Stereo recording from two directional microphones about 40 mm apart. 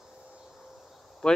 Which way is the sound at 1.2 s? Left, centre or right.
Centre.